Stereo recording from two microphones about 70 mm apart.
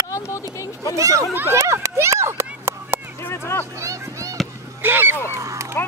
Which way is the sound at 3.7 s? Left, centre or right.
Right.